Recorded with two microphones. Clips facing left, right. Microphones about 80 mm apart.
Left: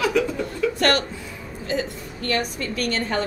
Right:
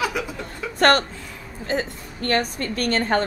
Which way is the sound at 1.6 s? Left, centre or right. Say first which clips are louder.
Right 1 dB; right.